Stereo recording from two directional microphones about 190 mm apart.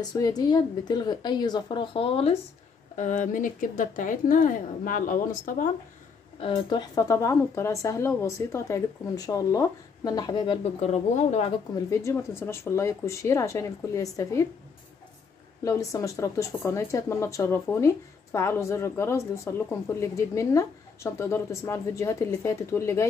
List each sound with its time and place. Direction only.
0.0 s speech: 20° left (ahead or behind)
3.0 s a woman's voice: 40° left (ahead or behind)
6.4 s speech: 25° left (ahead or behind)
10.8 s speech: 35° left (ahead or behind)
11.9 s speech: 15° left (ahead or behind)
15.6 s speech: 15° left (ahead or behind)